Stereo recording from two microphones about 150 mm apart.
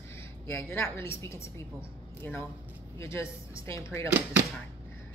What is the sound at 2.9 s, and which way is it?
Speech, 20° left (ahead or behind).